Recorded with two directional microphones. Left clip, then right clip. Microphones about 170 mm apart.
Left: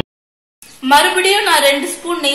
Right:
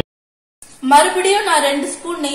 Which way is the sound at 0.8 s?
10° left (ahead or behind).